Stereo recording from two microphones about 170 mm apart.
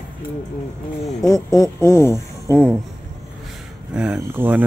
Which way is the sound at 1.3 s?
20° left (ahead or behind).